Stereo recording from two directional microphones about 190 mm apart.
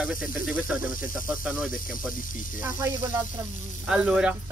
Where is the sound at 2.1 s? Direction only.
45° left (ahead or behind).